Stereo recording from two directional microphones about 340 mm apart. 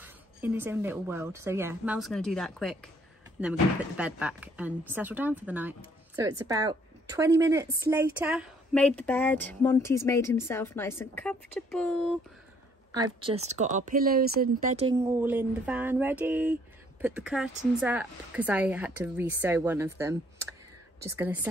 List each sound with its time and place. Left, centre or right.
0.0 s speech: centre
12.9 s speech: centre
15.0 s speech: centre